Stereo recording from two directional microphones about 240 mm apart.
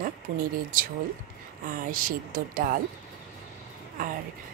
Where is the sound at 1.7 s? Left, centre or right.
Right.